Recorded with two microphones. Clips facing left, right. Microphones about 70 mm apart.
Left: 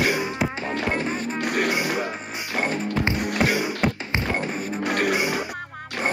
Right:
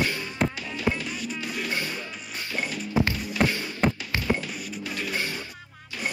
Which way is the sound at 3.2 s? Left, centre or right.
Left.